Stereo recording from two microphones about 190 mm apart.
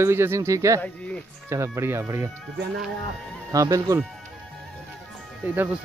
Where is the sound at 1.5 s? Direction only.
15° right (ahead or behind).